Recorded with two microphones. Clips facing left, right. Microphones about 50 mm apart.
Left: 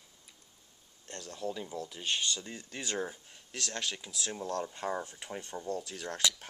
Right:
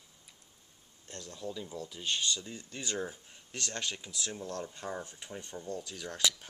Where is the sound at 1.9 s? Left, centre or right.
Centre.